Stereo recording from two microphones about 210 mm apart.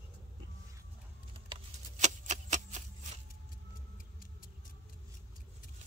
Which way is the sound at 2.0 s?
35° right (ahead or behind).